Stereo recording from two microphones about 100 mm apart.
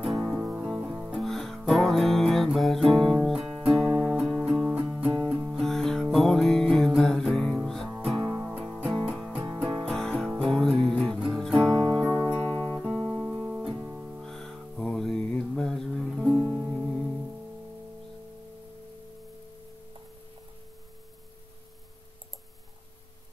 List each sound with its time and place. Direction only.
0.3 s music: 15° right (ahead or behind)
1.2 s music: 5° left (ahead or behind); by 8.5 s 10° right (ahead or behind)
9.1 s music: centre (ahead or behind)
12.4 s music: 15° left (ahead or behind)
12.7 s music: centre (ahead or behind)
13.7 s music: 20° right (ahead or behind)
14.2 s music: 5° left (ahead or behind)
16.4 s music: 15° right (ahead or behind)
16.7 s music: 5° left (ahead or behind)